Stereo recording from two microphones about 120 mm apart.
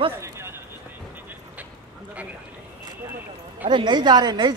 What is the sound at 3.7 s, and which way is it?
Speech, 40° right (ahead or behind).